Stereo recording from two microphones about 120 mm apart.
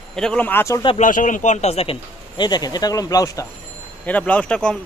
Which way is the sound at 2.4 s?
35° left (ahead or behind).